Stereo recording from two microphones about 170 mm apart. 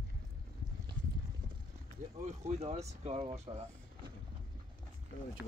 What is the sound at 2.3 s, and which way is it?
Speech, 40° right (ahead or behind).